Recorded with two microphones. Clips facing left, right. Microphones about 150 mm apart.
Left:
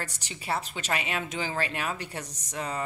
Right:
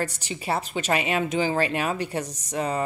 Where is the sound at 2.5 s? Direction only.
20° right (ahead or behind).